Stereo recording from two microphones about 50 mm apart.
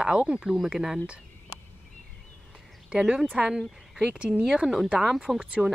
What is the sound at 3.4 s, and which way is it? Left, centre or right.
Speech, centre.